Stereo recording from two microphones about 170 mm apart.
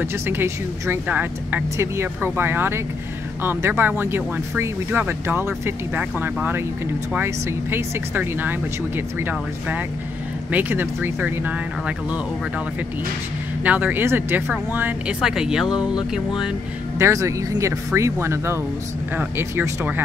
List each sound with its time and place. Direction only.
0.0 s speech: 15° right (ahead or behind)
13.7 s speech: 10° right (ahead or behind)
17.0 s speech: 20° right (ahead or behind)